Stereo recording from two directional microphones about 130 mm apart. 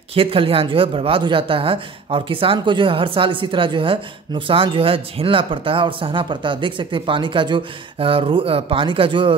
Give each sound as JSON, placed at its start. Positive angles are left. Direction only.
{"t": 0.1, "sound": "a woman's voice", "side_deg": -45}